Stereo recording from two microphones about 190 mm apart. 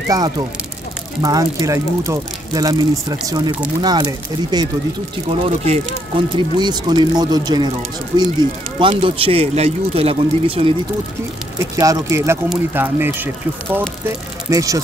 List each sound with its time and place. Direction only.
1.2 s speech: 20° right (ahead or behind)
5.3 s speech: 30° right (ahead or behind)
11.5 s speech: 15° right (ahead or behind)